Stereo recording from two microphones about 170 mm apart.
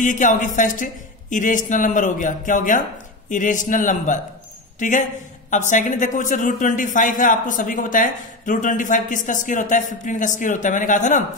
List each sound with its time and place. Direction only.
0.0 s a man's voice: 50° left (ahead or behind)